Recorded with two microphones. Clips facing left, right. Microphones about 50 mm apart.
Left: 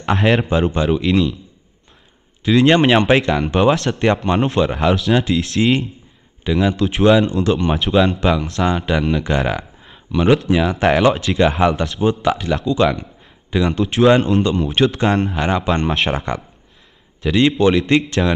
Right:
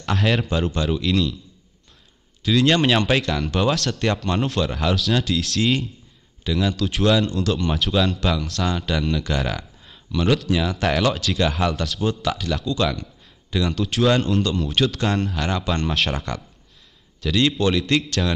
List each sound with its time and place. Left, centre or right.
0.0 s a man's voice: left
2.4 s speech: left
6.5 s speech: centre
6.8 s speech: left
7.7 s speech: centre
8.9 s speech: left
12.9 s a sound: left
13.7 s speech: left
17.2 s speech: left